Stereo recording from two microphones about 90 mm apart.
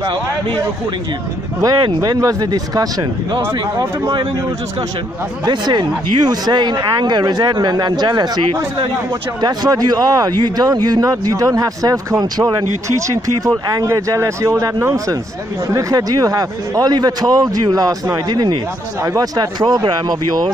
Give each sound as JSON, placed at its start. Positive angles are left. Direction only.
{"t": 1.6, "sound": "speech", "side_deg": -40}
{"t": 5.4, "sound": "speech", "side_deg": -55}
{"t": 9.4, "sound": "speech", "side_deg": -50}
{"t": 12.8, "sound": "speech", "side_deg": -35}